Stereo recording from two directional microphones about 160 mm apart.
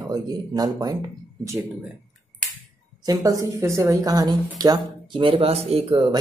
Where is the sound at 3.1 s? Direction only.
20° right (ahead or behind).